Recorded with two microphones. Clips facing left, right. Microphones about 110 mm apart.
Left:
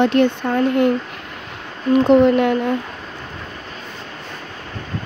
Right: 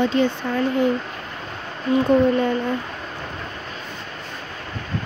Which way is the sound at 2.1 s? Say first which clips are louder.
Left 5 dB; 70° left (ahead or behind).